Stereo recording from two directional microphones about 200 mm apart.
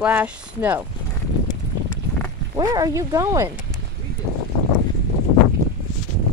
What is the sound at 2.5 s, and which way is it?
Speech, 20° right (ahead or behind).